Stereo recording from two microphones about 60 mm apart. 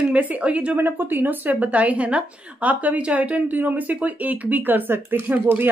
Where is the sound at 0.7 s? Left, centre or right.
Right.